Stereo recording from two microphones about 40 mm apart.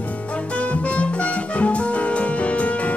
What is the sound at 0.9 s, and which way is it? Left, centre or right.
Music, left.